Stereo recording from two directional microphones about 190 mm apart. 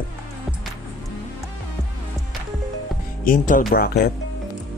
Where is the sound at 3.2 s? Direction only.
45° left (ahead or behind).